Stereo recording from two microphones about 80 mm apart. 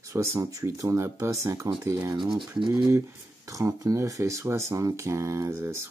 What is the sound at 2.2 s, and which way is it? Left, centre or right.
Speech, right.